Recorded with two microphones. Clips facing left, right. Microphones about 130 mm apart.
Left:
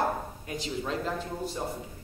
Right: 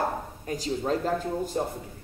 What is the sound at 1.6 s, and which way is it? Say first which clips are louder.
Speech: right 6 dB; 55° right (ahead or behind).